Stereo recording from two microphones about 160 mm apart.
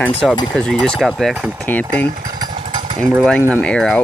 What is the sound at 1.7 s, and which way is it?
Speech, 10° left (ahead or behind).